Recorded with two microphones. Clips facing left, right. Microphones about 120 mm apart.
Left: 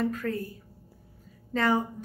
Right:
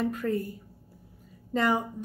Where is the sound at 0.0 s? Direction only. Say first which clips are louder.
Right 1 dB; 20° right (ahead or behind).